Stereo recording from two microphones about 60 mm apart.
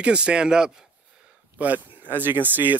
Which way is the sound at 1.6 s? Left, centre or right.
Right.